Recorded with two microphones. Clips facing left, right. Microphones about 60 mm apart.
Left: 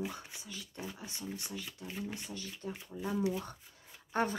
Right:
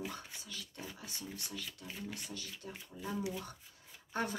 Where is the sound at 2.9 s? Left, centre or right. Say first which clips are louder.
Left 5 dB; centre.